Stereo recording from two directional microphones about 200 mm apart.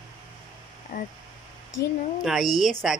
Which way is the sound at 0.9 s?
45° left (ahead or behind).